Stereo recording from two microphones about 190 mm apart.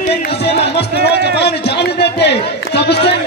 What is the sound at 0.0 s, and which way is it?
Music, 40° left (ahead or behind).